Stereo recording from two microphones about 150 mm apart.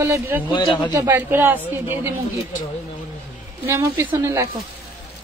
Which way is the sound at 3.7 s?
20° right (ahead or behind).